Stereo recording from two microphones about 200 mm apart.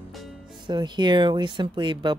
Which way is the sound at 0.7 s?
20° right (ahead or behind).